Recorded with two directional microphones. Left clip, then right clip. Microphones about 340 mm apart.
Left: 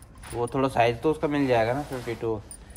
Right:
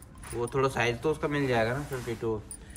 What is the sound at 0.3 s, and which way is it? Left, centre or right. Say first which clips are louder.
Speech: left 2 dB; left.